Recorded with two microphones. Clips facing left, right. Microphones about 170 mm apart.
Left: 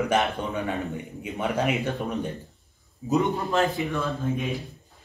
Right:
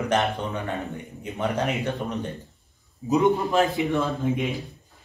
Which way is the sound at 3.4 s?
15° right (ahead or behind).